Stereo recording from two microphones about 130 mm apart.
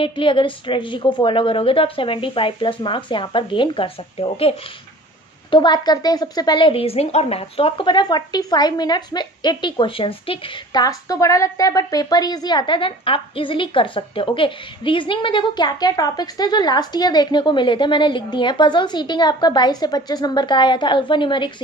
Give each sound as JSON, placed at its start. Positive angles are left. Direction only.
{"t": 0.0, "sound": "a woman's voice", "side_deg": 40}
{"t": 5.5, "sound": "a woman's voice", "side_deg": 35}
{"t": 10.8, "sound": "a woman's voice", "side_deg": 30}